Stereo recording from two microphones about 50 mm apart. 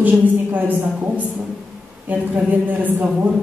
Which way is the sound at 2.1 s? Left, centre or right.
Right.